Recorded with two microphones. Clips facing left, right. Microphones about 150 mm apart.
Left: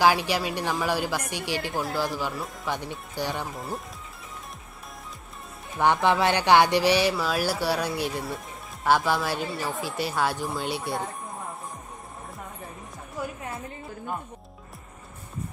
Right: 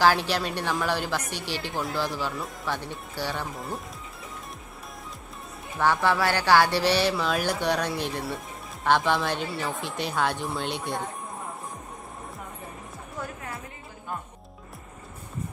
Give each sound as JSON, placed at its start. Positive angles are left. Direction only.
{"t": 0.0, "sound": "speech", "side_deg": 15}
{"t": 1.7, "sound": "speech", "side_deg": 0}
{"t": 2.0, "sound": "speech", "side_deg": 15}
{"t": 2.3, "sound": "speech", "side_deg": 0}
{"t": 2.7, "sound": "speech", "side_deg": 15}
{"t": 3.5, "sound": "speech", "side_deg": 0}
{"t": 5.8, "sound": "speech", "side_deg": 20}